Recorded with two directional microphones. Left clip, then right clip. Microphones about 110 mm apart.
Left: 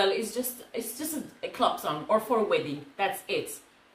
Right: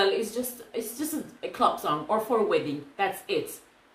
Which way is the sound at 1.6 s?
5° right (ahead or behind).